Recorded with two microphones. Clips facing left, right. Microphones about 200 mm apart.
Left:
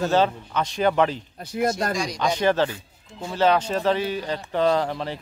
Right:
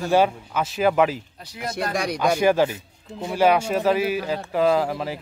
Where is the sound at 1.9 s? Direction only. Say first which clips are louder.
Right 1 dB; 60° right (ahead or behind).